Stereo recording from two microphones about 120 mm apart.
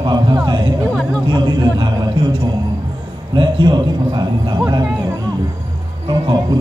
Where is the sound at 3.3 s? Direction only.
40° right (ahead or behind).